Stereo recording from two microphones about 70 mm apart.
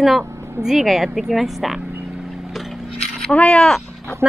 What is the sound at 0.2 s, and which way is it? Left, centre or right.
Speech, centre.